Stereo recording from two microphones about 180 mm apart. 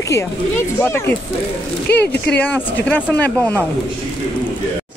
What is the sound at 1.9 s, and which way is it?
Speech, 65° left (ahead or behind).